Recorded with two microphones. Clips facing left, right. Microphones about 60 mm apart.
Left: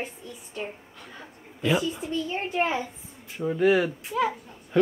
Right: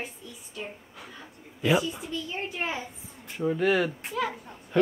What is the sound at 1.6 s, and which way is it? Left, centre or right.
Speech, centre.